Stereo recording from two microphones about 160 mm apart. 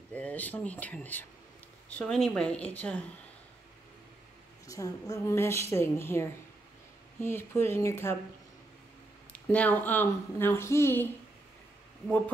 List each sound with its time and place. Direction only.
0.1 s speech: 10° left (ahead or behind)
4.6 s speech: 20° left (ahead or behind)
9.3 s speech: 10° left (ahead or behind)